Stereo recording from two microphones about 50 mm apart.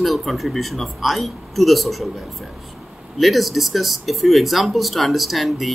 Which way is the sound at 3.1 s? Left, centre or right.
Centre.